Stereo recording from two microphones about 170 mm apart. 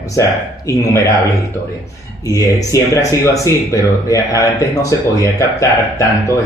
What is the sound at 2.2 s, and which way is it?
Speech, 20° left (ahead or behind).